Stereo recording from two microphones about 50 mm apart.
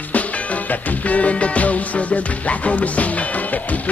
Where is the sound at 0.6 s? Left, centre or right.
Left.